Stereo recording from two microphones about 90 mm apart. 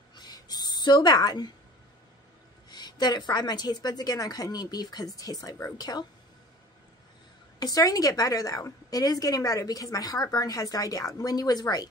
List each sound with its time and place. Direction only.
0.1 s a sound: 50° left (ahead or behind)
2.7 s a woman's voice: 50° left (ahead or behind)
7.5 s a woman's voice: 45° left (ahead or behind)